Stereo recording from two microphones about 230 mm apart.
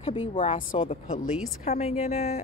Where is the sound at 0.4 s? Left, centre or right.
Left.